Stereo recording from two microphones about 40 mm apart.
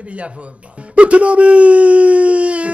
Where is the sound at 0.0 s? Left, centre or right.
Right.